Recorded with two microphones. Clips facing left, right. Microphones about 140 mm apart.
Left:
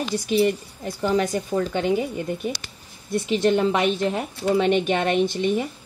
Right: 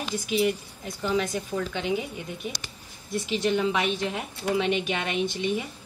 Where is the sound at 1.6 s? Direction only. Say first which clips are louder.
Left 7 dB; 45° left (ahead or behind).